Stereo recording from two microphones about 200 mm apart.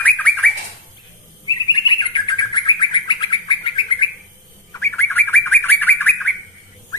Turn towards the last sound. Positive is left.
turn(degrees=10)  # may be behind; listen again after turning